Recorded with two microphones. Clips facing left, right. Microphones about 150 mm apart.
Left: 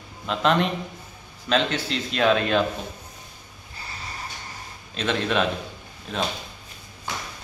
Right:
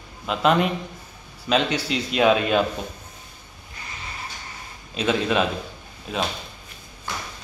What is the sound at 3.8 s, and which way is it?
Vehicle, 35° left (ahead or behind).